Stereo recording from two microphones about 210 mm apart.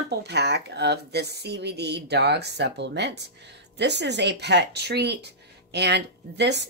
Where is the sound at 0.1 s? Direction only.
50° right (ahead or behind).